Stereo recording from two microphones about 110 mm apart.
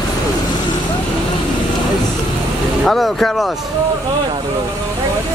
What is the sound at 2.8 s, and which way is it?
Speech, 5° left (ahead or behind).